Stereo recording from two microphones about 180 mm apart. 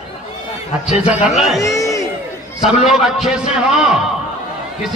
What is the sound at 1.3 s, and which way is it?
Speech, centre (ahead or behind).